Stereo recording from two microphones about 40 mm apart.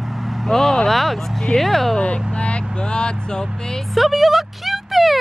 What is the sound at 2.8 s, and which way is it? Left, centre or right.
Speech, left.